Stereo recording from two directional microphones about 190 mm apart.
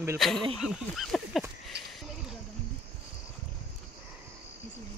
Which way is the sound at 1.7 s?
60° right (ahead or behind).